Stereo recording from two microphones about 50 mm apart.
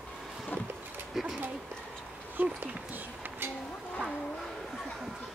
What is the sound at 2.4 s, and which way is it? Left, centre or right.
Speech, right.